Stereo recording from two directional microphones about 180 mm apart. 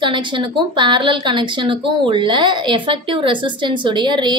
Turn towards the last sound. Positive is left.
turn(degrees=-25)  # may be behind; listen again after turning